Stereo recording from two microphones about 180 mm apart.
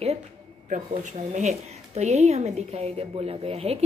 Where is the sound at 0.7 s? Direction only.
45° right (ahead or behind).